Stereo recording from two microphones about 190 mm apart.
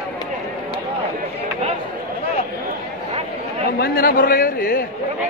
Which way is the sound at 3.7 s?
50° left (ahead or behind).